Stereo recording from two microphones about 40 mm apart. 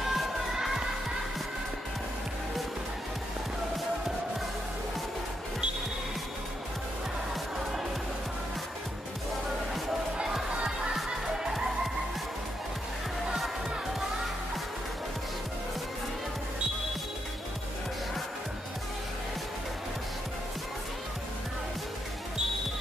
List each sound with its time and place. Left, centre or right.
0.0 s music: centre
10.5 s music: centre